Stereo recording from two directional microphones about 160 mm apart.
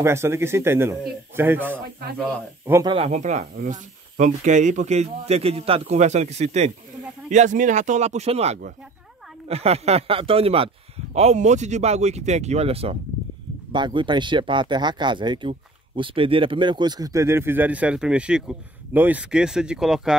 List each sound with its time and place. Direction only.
0.0 s speech: 15° right (ahead or behind)
2.9 s speech: 40° right (ahead or behind); by 20.2 s 5° right (ahead or behind)